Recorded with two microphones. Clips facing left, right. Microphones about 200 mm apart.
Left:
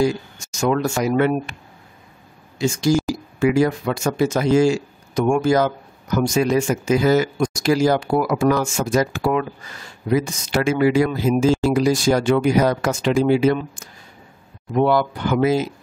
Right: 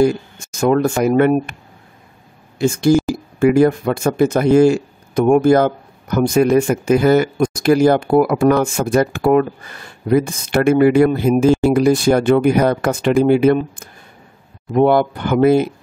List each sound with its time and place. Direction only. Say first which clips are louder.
0.0 s speech: right 5 dB; 55° right (ahead or behind)
2.6 s speech: right 5 dB; 55° right (ahead or behind)